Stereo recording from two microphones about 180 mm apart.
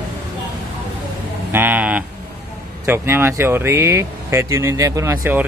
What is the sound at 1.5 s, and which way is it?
Speech, 10° right (ahead or behind).